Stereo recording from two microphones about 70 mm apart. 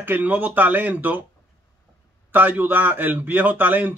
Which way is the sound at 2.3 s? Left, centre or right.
Right.